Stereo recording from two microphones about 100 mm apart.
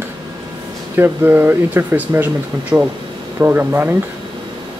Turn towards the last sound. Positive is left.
turn(degrees=-20)  # may be behind; listen again after turning